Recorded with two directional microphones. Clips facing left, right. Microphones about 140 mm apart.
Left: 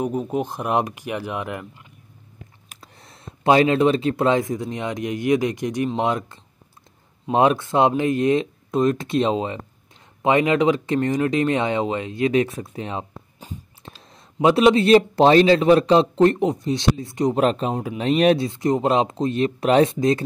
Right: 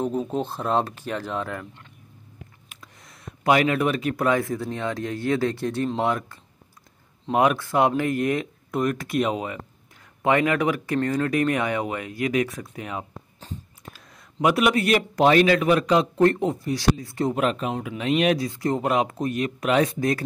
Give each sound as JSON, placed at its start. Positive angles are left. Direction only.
{"t": 0.0, "sound": "speech", "side_deg": 10}
{"t": 2.7, "sound": "speech", "side_deg": 30}
{"t": 7.3, "sound": "speech", "side_deg": 25}
{"t": 17.4, "sound": "speech", "side_deg": 30}